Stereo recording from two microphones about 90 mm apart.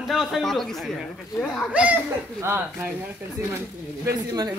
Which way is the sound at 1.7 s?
15° right (ahead or behind).